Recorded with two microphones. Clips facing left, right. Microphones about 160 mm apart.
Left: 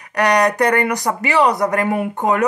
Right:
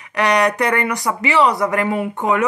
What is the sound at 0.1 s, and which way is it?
Speech, 45° left (ahead or behind).